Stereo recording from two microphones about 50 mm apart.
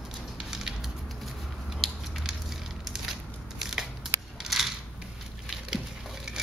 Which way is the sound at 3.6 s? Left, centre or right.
Centre.